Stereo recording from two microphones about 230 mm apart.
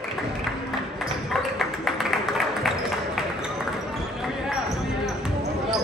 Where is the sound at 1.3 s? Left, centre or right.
Centre.